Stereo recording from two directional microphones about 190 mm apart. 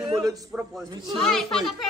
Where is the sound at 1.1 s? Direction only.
Centre (ahead or behind).